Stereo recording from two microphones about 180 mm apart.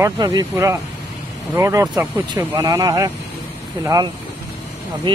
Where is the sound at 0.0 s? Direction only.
20° right (ahead or behind).